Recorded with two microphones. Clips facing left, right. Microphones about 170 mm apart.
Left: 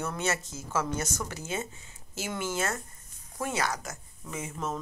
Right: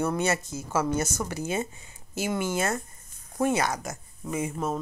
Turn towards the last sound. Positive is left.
turn(degrees=-15)  # may be behind; listen again after turning